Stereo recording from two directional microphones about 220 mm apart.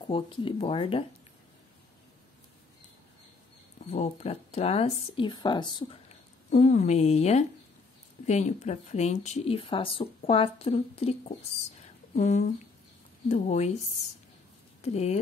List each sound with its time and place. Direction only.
0.0 s speech: 25° left (ahead or behind)
3.9 s speech: 30° left (ahead or behind)
6.5 s speech: 30° left (ahead or behind)
14.8 s speech: 30° left (ahead or behind)